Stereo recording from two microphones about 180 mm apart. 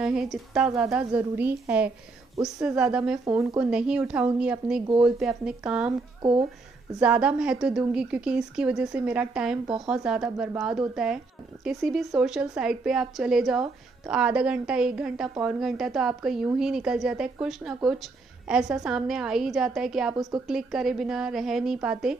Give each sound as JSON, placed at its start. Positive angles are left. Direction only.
{"t": 0.0, "sound": "a woman's voice", "side_deg": -5}
{"t": 7.0, "sound": "a woman's voice", "side_deg": -5}